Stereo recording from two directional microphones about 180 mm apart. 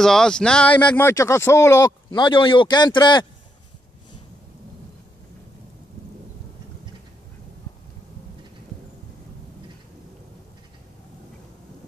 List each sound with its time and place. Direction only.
0.0 s speech: 5° left (ahead or behind); by 3.3 s 25° left (ahead or behind)